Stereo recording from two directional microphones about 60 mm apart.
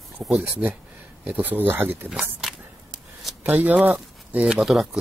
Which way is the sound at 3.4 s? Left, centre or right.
Right.